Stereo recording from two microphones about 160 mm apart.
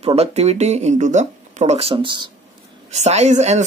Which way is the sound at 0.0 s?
40° right (ahead or behind).